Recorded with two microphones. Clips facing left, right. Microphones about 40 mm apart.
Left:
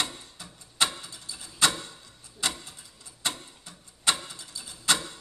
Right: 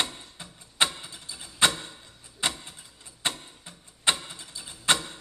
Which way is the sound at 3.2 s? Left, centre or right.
Right.